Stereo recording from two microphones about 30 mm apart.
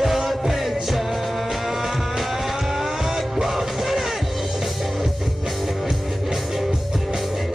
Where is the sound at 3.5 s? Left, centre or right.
Centre.